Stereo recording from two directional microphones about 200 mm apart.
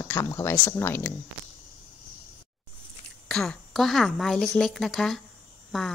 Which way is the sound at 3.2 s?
Centre (ahead or behind).